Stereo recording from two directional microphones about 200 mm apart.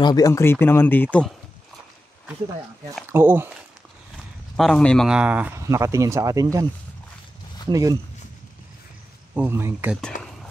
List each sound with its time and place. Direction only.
0.0 s speech: 20° left (ahead or behind)
3.1 s speech: 10° right (ahead or behind)
4.6 s speech: 5° left (ahead or behind); by 6.6 s 15° right (ahead or behind)
7.7 s speech: 15° right (ahead or behind)
9.3 s speech: 10° right (ahead or behind)
10.1 s speech: 40° left (ahead or behind)